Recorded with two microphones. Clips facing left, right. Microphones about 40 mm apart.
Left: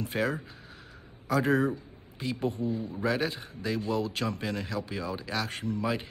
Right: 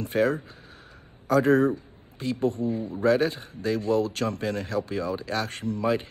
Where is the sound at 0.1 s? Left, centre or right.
Centre.